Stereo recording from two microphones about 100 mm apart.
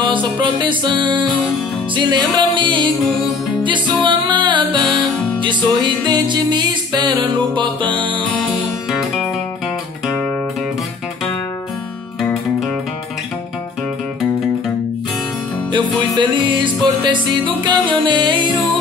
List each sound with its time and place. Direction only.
0.0 s music: 55° right (ahead or behind)
16.2 s music: 50° right (ahead or behind)